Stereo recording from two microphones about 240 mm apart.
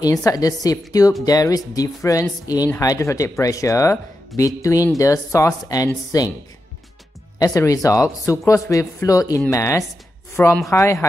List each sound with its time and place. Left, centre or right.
0.0 s speech: centre
7.3 s speech: centre